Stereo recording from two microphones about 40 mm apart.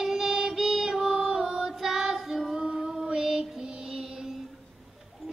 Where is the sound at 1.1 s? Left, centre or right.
Centre.